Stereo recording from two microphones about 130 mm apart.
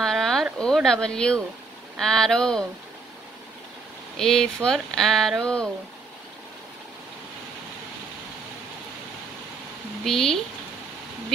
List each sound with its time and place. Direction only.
0.0 s speech: 5° left (ahead or behind)
4.2 s speech: 5° left (ahead or behind)
10.0 s speech: 5° left (ahead or behind)